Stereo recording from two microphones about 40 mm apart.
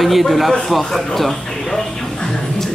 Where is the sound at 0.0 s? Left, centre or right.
Centre.